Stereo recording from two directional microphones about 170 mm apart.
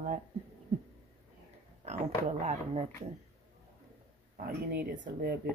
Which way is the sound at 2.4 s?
40° right (ahead or behind).